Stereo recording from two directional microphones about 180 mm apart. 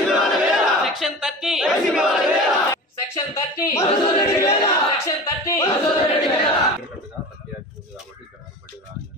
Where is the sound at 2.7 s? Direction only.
15° left (ahead or behind).